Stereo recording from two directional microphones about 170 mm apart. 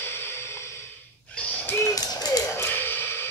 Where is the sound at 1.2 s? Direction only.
10° left (ahead or behind).